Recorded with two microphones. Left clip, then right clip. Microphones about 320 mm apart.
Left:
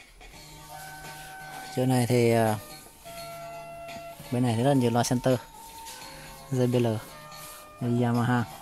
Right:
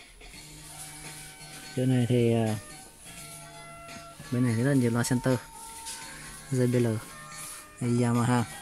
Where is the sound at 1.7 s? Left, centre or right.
Left.